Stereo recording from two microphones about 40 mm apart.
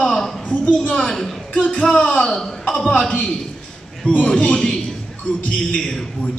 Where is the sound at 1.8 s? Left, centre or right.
Centre.